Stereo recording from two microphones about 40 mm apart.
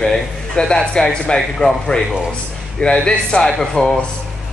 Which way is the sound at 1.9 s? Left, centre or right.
Left.